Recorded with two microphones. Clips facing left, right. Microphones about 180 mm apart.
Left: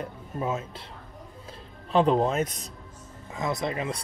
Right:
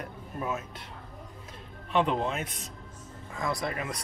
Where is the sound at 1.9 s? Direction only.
35° left (ahead or behind).